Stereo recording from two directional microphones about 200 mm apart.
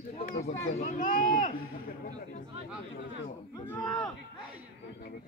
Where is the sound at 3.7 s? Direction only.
20° left (ahead or behind).